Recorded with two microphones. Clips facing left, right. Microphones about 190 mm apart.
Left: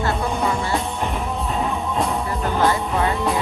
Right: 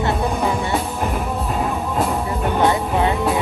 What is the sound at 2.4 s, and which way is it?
Music, 20° right (ahead or behind).